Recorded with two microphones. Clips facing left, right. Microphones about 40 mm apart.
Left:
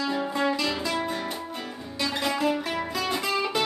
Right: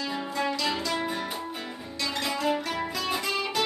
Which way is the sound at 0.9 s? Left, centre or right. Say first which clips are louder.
Left 1 dB; centre.